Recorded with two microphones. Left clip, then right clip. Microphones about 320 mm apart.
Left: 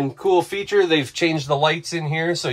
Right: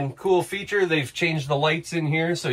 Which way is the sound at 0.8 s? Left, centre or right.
Left.